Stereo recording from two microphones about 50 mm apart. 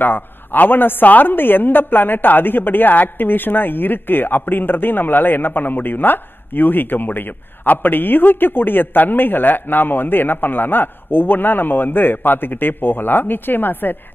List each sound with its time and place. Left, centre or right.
0.0 s a woman's voice: left